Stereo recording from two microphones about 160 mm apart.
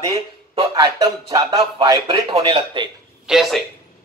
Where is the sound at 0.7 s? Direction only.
25° right (ahead or behind).